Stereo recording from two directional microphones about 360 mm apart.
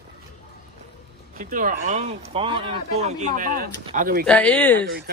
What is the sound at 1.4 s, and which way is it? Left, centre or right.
Speech, right.